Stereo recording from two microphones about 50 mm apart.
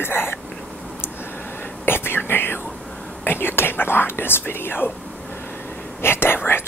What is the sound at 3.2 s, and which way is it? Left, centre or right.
Speech, left.